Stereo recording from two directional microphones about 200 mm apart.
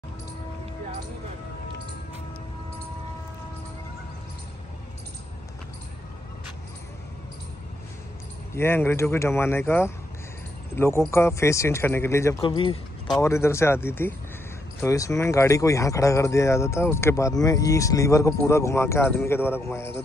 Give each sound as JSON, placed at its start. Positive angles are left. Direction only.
{"t": 8.5, "sound": "speech", "side_deg": 10}
{"t": 12.4, "sound": "speech", "side_deg": 25}
{"t": 13.2, "sound": "speech", "side_deg": 15}